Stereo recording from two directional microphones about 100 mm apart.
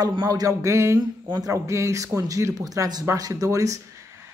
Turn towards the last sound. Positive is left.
turn(degrees=-35)  # may be behind; listen again after turning